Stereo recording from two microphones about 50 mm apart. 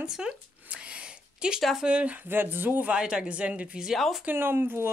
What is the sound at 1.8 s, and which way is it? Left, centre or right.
Speech, right.